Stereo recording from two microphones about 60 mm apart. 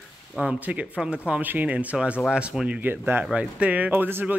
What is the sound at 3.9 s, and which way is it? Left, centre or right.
Speech, right.